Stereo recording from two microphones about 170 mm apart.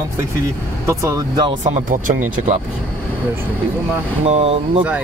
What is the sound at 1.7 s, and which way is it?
Speech, 50° right (ahead or behind).